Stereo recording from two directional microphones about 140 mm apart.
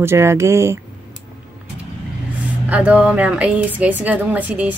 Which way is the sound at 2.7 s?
10° right (ahead or behind).